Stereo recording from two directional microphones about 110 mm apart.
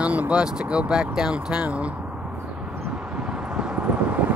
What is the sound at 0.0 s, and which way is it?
Vehicle, 15° right (ahead or behind).